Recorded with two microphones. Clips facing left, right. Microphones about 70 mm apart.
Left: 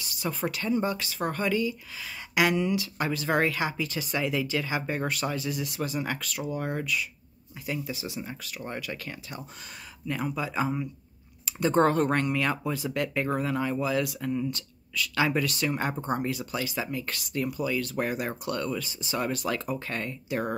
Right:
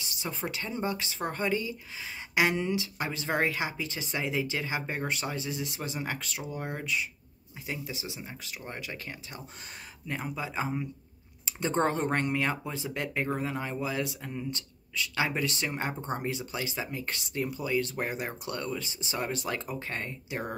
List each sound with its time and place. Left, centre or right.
0.0 s speech: right
15.9 s speech: left
16.2 s speech: right